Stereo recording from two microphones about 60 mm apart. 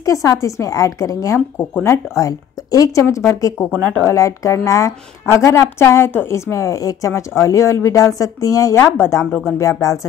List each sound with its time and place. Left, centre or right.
0.0 s a woman's voice: left
7.1 s speech: left
8.7 s speech: left
9.6 s speech: left